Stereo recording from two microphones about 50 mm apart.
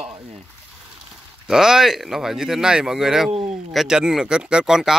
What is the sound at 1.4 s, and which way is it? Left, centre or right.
Speech, centre.